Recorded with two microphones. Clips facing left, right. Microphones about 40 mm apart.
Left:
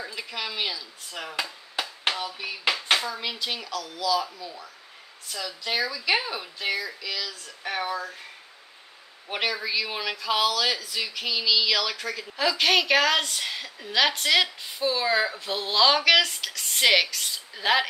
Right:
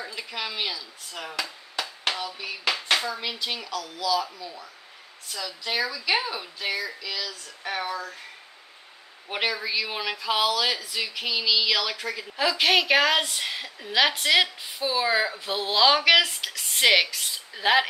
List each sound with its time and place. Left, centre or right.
0.0 s speech: centre
1.4 s chop: centre
2.1 s a sound: centre
2.7 s speech: centre
9.3 s speech: centre